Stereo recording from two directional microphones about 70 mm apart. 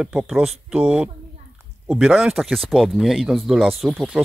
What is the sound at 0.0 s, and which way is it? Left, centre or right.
Speech, centre.